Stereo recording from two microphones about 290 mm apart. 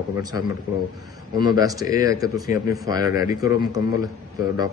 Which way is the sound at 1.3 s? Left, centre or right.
Centre.